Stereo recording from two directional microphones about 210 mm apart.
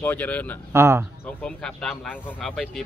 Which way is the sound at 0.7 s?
10° right (ahead or behind).